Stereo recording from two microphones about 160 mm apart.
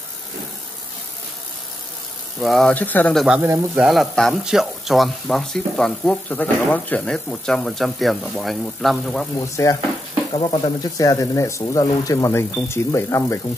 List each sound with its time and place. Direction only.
2.4 s speech: 5° left (ahead or behind)
3.3 s speech: 10° right (ahead or behind)
9.6 s speech: 15° left (ahead or behind)
10.3 s speech: 30° left (ahead or behind)